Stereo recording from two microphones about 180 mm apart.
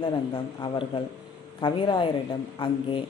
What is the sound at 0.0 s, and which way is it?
Speech, 25° left (ahead or behind).